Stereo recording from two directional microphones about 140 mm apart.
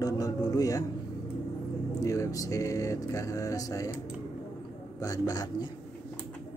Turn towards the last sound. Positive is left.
turn(degrees=25)  # may be behind; listen again after turning